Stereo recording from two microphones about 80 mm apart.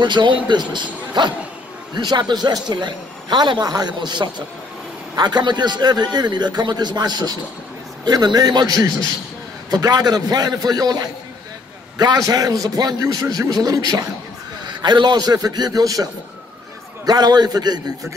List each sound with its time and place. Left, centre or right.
0.0 s a man's voice: right
14.7 s a man's voice: right